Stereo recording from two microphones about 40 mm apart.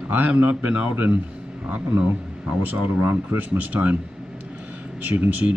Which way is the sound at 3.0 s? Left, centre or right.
Right.